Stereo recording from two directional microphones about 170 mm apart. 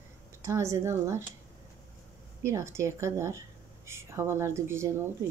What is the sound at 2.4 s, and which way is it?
Speech, 15° right (ahead or behind).